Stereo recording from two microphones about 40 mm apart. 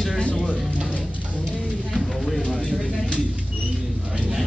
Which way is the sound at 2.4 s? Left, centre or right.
Centre.